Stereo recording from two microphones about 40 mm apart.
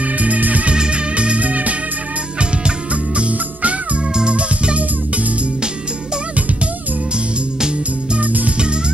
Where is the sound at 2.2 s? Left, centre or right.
Right.